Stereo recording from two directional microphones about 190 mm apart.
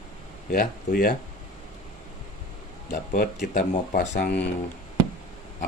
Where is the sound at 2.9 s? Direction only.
45° left (ahead or behind).